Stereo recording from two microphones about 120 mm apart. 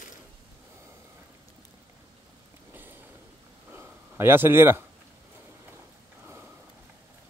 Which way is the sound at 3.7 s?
20° right (ahead or behind).